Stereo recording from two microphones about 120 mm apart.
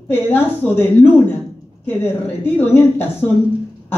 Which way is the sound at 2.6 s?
15° left (ahead or behind).